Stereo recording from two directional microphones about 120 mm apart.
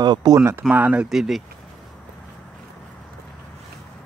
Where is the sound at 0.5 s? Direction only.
15° right (ahead or behind).